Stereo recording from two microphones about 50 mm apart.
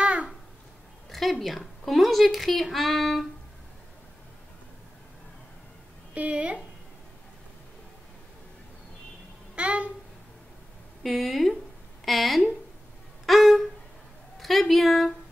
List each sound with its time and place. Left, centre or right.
0.0 s babbling: right
1.1 s speech: centre
6.1 s a woman's voice: right
9.6 s babbling: right
11.0 s speech: centre
13.2 s a sound: centre
14.4 s speech: centre